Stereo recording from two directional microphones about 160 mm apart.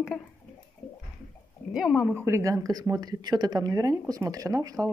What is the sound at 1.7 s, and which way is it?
A woman's voice, 5° right (ahead or behind).